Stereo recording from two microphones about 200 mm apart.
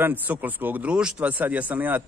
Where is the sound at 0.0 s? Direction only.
10° right (ahead or behind).